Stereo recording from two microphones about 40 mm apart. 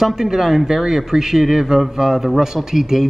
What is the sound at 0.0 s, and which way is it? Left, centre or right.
A man's voice, centre.